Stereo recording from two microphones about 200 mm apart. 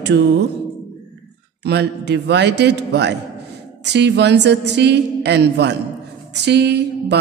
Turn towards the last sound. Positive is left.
turn(degrees=-55)  # may be behind; listen again after turning